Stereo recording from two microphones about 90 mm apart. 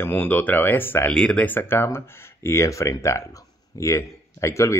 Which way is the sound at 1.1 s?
10° left (ahead or behind).